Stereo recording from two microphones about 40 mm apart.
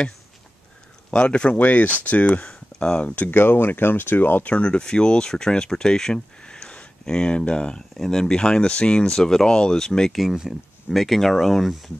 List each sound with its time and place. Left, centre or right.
1.1 s speech: left
1.5 s speech: left
2.4 s a sound: left
3.0 s speech: left
3.3 s speech: left
4.5 s speech: left
6.4 s a sound: left
8.0 s speech: centre
9.1 s speech: centre
10.1 s speech: centre
10.9 s speech: centre